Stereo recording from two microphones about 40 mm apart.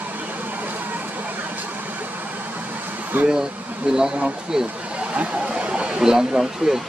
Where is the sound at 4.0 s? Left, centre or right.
Centre.